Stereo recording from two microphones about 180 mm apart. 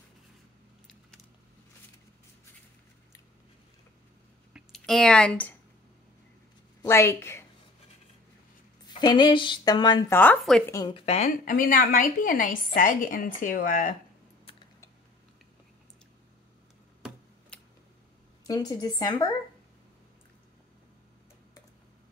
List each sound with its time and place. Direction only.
4.6 s a sound: centre (ahead or behind)
6.8 s a woman's voice: 15° left (ahead or behind)
8.8 s a woman's voice: 25° left (ahead or behind)
10.1 s speech: 10° left (ahead or behind)
10.6 s a woman's voice: 20° left (ahead or behind)
11.1 s a woman's voice: 45° left (ahead or behind)
17.5 s a sound: 5° left (ahead or behind)
18.4 s a woman's voice: 20° left (ahead or behind)